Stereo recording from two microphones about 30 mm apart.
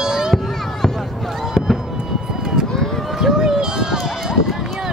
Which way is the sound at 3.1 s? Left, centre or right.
Centre.